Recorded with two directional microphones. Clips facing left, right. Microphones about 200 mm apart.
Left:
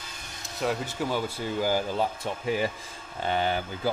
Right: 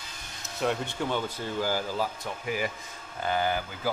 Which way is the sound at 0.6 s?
Centre (ahead or behind).